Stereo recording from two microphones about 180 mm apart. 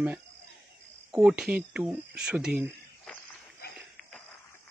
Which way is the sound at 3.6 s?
60° left (ahead or behind).